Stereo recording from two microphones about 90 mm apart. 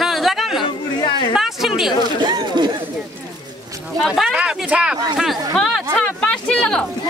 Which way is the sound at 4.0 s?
5° right (ahead or behind).